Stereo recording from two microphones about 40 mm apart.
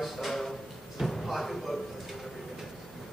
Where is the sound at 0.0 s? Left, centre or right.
Centre.